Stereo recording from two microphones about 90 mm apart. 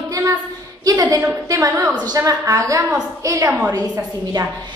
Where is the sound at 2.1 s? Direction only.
40° right (ahead or behind).